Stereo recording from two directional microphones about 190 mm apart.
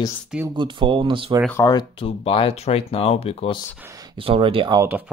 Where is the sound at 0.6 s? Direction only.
25° right (ahead or behind).